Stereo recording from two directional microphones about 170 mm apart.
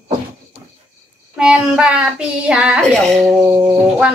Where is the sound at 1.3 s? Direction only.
5° right (ahead or behind).